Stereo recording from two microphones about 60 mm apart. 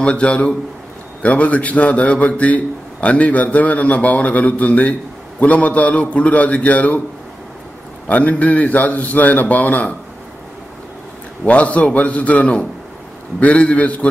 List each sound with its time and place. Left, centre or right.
0.0 s a man's voice: centre
8.1 s a man's voice: left
11.4 s a man's voice: left